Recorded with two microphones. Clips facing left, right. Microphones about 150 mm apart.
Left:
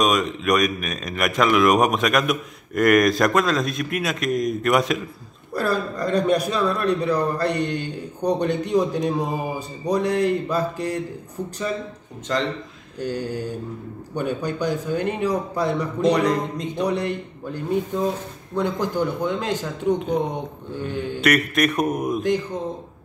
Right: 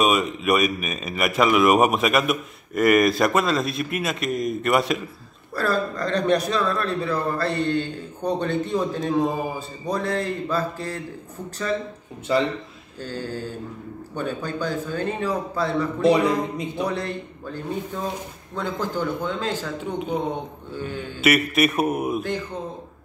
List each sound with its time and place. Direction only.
0.0 s speech: 5° right (ahead or behind)
5.5 s speech: 15° left (ahead or behind)
12.3 s a man's voice: 5° right (ahead or behind)
13.0 s speech: 15° left (ahead or behind)
16.1 s a man's voice: 5° right (ahead or behind)
16.8 s speech: 15° left (ahead or behind)
21.2 s speech: 5° right (ahead or behind)